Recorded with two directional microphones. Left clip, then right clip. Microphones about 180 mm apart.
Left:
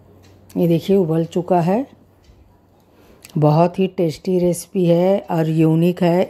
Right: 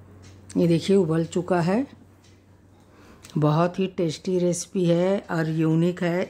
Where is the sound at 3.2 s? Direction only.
15° left (ahead or behind).